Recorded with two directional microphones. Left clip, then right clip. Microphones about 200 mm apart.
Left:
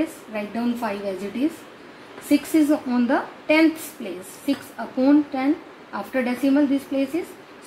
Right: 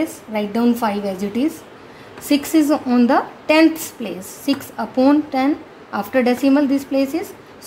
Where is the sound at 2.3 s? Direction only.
55° right (ahead or behind).